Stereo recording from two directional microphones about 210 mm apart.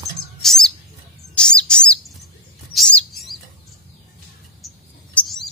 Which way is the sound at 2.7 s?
Centre (ahead or behind).